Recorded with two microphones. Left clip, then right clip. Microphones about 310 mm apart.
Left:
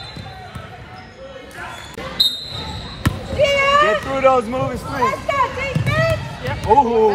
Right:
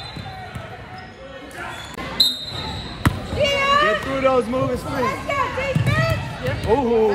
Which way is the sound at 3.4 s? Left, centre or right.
Centre.